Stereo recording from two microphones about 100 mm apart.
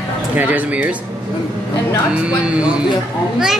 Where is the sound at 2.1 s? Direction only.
10° right (ahead or behind).